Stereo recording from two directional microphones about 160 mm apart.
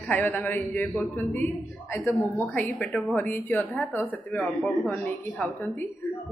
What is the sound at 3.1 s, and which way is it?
A man's voice, 10° left (ahead or behind).